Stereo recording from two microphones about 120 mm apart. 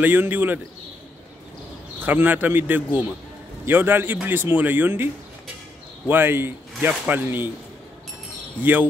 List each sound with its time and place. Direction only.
0.0 s a man's voice: 15° right (ahead or behind)
2.0 s a man's voice: 15° right (ahead or behind)